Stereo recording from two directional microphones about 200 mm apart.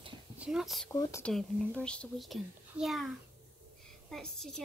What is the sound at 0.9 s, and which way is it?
A child's voice, 15° left (ahead or behind).